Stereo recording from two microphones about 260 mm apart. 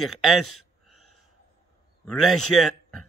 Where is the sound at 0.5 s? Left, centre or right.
Left.